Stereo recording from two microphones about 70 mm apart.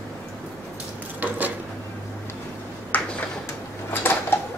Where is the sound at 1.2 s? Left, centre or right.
Right.